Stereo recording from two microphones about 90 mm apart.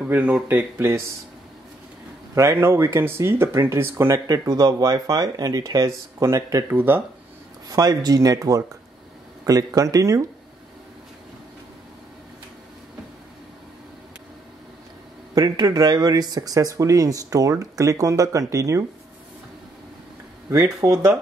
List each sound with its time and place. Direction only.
0.0 s speech: 15° right (ahead or behind)
2.3 s speech: 30° right (ahead or behind)
4.1 s speech: 45° right (ahead or behind)
7.6 s speech: 45° right (ahead or behind)
15.3 s speech: 45° right (ahead or behind)
20.8 s speech: 35° right (ahead or behind)